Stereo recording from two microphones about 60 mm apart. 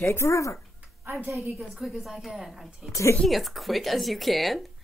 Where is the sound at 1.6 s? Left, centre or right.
Centre.